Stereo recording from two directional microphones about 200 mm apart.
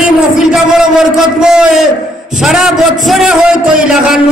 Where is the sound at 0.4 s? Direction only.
Centre (ahead or behind).